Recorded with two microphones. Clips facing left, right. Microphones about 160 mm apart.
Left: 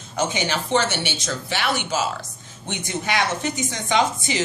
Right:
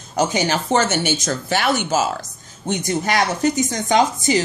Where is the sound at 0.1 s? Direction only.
40° right (ahead or behind).